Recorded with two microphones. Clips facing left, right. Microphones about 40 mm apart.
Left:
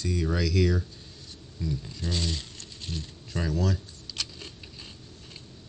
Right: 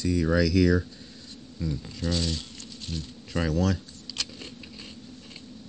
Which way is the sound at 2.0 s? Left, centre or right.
Left.